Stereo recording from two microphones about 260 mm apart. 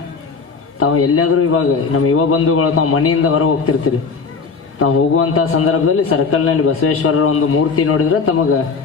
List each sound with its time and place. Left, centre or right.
0.7 s a man's voice: left